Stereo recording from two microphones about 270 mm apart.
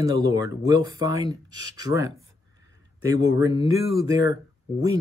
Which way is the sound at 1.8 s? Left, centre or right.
Centre.